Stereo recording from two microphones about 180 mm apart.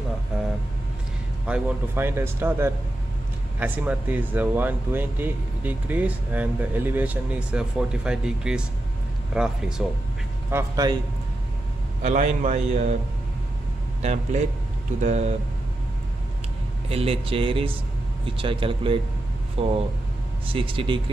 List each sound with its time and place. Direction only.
1.5 s speech: 10° right (ahead or behind)
10.5 s speech: 20° right (ahead or behind)
12.0 s a man's voice: 40° right (ahead or behind)
15.0 s a man's voice: 40° right (ahead or behind)
16.9 s a man's voice: 30° right (ahead or behind)